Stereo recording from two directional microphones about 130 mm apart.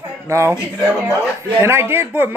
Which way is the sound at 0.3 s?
20° right (ahead or behind).